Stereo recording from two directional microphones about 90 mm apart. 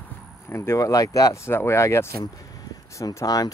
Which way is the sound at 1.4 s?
30° left (ahead or behind).